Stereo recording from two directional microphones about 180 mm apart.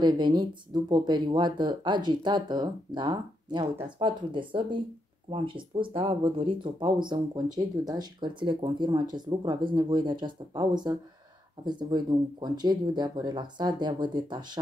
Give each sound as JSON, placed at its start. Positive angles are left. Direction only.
{"t": 0.0, "sound": "speech", "side_deg": -25}